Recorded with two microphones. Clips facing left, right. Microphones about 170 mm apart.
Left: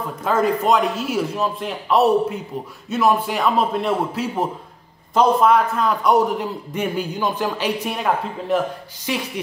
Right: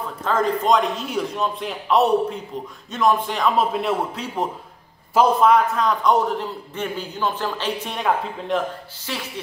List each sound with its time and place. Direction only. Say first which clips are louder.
0.2 s a man's voice: left 2 dB; 10° left (ahead or behind)